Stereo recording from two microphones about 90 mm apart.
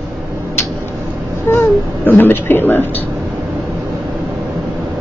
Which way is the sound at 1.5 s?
20° left (ahead or behind).